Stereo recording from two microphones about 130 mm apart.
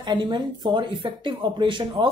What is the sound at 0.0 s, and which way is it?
Speech, 35° right (ahead or behind).